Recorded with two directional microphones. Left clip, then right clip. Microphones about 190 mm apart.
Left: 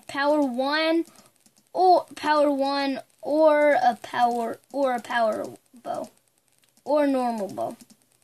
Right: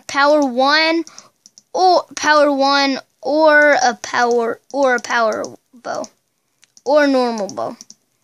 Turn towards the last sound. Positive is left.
turn(degrees=-50)  # may be behind; listen again after turning